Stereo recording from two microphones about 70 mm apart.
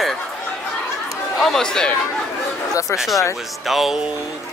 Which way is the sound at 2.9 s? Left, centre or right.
Centre.